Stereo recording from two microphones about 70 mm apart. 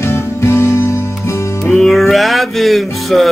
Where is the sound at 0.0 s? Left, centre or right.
Left.